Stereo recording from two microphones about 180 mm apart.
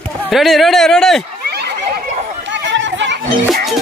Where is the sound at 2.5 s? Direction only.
85° right.